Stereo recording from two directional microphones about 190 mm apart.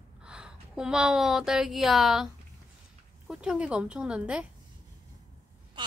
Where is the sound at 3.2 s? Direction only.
5° right (ahead or behind).